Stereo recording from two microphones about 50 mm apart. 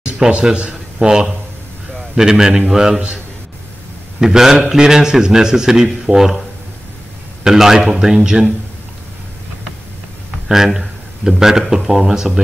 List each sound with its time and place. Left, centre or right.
0.0 s a man's voice: centre
4.2 s a man's voice: centre
7.4 s a man's voice: centre
10.5 s a man's voice: centre